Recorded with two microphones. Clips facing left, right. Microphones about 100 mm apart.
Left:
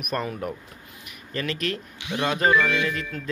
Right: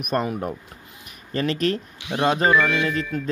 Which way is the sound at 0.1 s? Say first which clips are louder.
Right 4 dB; 25° right (ahead or behind).